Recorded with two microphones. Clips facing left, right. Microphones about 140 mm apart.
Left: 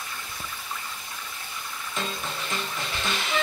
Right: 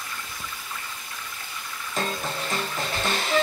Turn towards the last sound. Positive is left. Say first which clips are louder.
# right 4 dB
turn(degrees=-40)  # may be behind; listen again after turning